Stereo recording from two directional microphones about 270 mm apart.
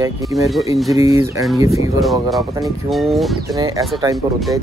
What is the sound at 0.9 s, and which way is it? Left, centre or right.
Speech, centre.